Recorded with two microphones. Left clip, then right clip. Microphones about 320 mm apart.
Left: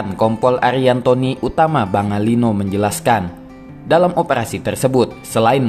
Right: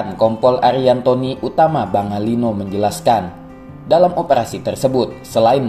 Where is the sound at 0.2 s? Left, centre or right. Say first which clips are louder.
Right 2 dB; left.